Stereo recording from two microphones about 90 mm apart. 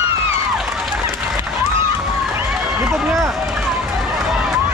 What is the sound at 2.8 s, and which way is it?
Run, 5° right (ahead or behind).